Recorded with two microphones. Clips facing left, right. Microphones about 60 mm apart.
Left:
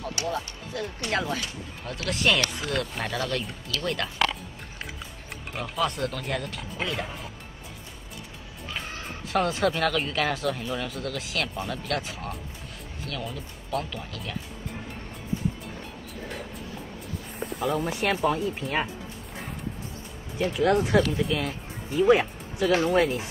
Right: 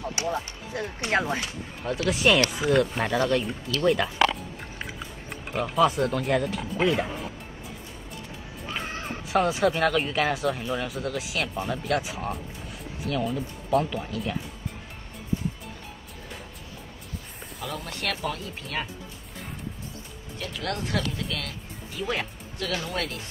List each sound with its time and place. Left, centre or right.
0.0 s speech: right
1.9 s speech: centre
3.1 s speech: centre
3.3 s speech: centre
5.5 s speech: centre
8.6 s music: right
9.3 s speech: centre
17.4 s speech: centre
20.3 s speech: centre